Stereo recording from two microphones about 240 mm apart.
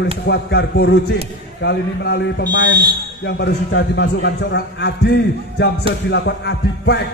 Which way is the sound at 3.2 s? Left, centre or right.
Left.